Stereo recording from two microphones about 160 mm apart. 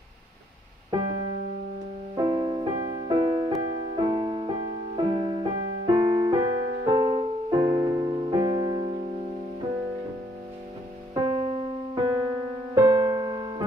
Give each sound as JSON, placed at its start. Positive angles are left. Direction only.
{"t": 0.9, "sound": "music", "side_deg": -30}
{"t": 2.1, "sound": "music", "side_deg": -30}
{"t": 11.1, "sound": "music", "side_deg": -30}